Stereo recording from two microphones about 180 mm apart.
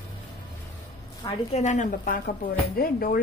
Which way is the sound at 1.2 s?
40° left (ahead or behind).